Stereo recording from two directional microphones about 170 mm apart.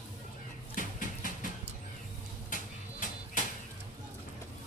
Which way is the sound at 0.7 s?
50° left (ahead or behind).